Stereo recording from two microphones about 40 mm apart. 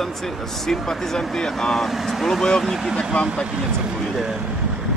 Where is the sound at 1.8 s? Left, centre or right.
Centre.